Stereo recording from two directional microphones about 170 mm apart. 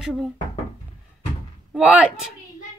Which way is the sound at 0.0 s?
5° right (ahead or behind).